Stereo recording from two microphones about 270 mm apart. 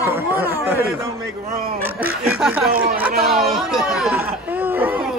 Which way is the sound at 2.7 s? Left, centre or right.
Right.